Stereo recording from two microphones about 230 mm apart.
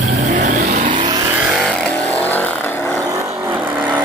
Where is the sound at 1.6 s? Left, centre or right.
Centre.